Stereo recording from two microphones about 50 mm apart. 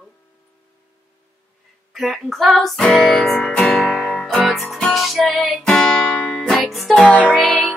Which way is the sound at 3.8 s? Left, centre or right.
Centre.